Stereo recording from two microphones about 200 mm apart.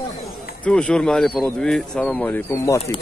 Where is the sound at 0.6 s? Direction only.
5° left (ahead or behind).